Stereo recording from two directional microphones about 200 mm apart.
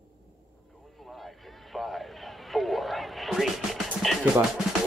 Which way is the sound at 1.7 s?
Centre (ahead or behind).